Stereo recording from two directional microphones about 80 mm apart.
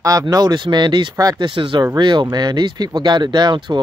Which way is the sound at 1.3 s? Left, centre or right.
Right.